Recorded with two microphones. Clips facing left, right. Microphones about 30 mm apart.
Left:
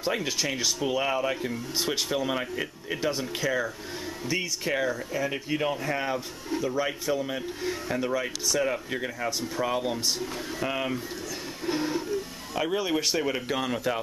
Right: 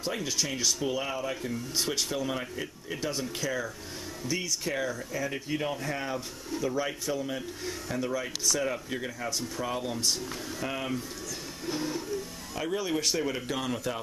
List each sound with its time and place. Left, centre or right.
0.0 s speech: centre
11.6 s a sound: left
12.1 s speech: left